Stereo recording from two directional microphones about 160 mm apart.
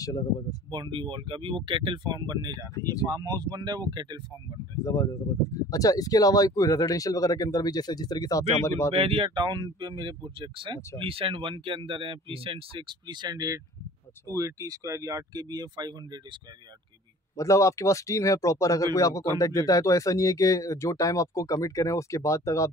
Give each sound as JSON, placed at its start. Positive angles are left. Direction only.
{"t": 0.0, "sound": "speech", "side_deg": 25}
{"t": 0.7, "sound": "speech", "side_deg": -30}
{"t": 4.8, "sound": "speech", "side_deg": 20}
{"t": 8.9, "sound": "speech", "side_deg": -35}
{"t": 17.4, "sound": "speech", "side_deg": 20}